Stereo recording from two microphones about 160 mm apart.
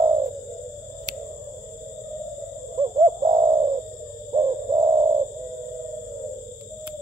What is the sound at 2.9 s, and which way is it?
Owl, 30° right (ahead or behind).